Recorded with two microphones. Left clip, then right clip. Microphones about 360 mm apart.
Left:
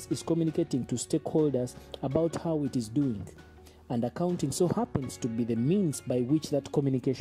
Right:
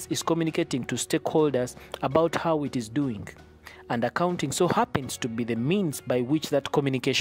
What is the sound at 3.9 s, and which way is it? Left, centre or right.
Speech, right.